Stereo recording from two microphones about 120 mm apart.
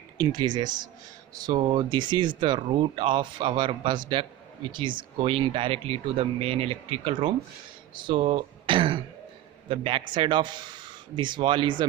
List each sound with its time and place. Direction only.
0.2 s speech: 40° right (ahead or behind)